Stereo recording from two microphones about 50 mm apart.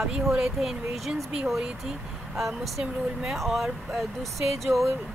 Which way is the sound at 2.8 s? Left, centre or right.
Centre.